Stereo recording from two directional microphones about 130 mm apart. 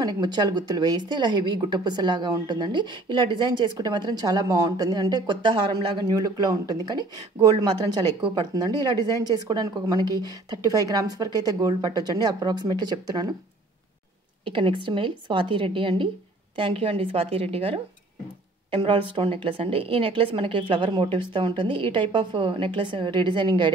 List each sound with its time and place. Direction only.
0.0 s speech: 35° right (ahead or behind)
14.4 s a woman's voice: 40° right (ahead or behind)